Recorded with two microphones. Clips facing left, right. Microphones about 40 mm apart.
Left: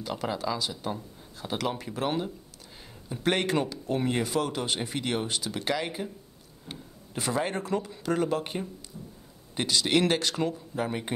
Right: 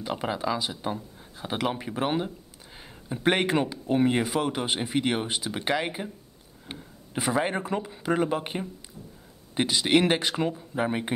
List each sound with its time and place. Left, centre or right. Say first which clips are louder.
0.0 s speech: right 2 dB; right